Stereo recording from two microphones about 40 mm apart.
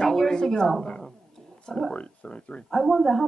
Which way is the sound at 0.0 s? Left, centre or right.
Centre.